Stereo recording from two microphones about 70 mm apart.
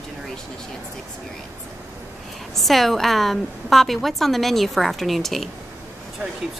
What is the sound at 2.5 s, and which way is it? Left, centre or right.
A woman's voice, centre.